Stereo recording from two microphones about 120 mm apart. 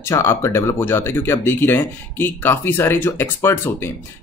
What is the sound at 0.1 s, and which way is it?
Speech, 20° left (ahead or behind).